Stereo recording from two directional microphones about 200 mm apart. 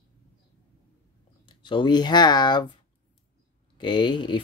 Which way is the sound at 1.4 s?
25° left (ahead or behind).